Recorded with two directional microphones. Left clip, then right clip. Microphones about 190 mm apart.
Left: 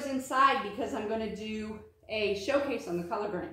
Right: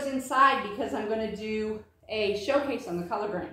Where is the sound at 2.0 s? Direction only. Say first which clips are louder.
Right 3 dB; 10° right (ahead or behind).